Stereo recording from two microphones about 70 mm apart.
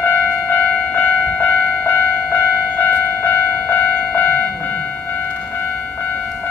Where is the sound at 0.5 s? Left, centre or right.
Left.